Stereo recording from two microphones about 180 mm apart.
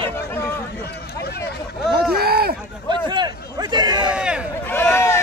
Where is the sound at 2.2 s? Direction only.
60° right (ahead or behind).